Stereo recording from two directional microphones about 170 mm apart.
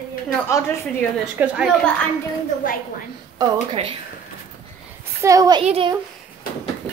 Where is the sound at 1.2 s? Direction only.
5° right (ahead or behind).